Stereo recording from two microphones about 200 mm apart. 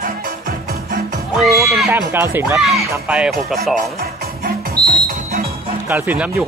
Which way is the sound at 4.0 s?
50° right (ahead or behind).